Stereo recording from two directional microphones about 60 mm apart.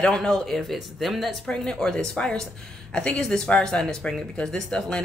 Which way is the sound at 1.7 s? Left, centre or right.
Centre.